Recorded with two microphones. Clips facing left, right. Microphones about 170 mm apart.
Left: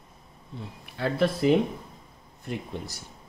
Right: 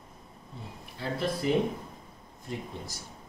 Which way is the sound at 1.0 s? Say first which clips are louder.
Left 6 dB; 65° left (ahead or behind).